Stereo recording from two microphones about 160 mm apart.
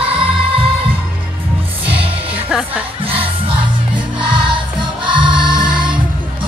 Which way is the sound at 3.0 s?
35° right (ahead or behind).